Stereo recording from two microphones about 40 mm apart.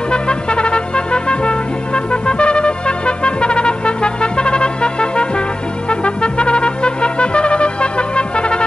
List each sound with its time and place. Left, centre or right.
0.1 s brass instrument: left
2.2 s trumpet: left
5.9 s brass instrument: left